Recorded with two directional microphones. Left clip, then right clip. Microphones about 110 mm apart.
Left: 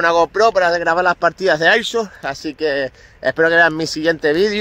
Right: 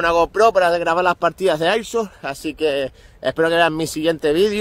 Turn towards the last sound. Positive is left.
turn(degrees=-20)  # may be behind; listen again after turning